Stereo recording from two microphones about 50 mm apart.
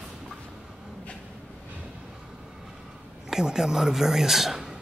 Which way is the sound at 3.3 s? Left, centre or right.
Centre.